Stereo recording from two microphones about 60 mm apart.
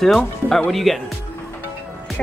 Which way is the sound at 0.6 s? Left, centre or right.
Centre.